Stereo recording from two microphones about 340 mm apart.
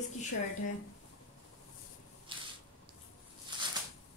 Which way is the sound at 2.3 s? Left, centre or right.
Centre.